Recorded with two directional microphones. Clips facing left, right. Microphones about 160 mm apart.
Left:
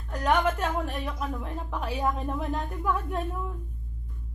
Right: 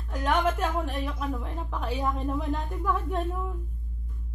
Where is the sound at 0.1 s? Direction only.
Centre (ahead or behind).